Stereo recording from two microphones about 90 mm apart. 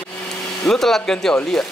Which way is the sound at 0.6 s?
5° left (ahead or behind).